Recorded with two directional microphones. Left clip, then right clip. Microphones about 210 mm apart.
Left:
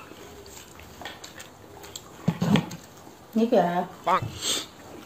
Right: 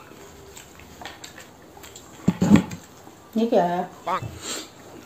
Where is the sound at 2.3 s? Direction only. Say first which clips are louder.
Right 6 dB; 5° right (ahead or behind).